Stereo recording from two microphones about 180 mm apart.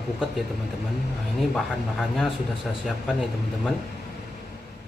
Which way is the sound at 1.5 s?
Centre (ahead or behind).